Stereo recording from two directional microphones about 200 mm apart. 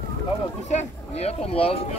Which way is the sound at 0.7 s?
30° left (ahead or behind).